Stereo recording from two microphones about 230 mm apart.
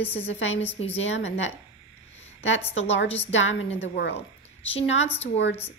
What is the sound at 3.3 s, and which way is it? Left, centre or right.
Speech, left.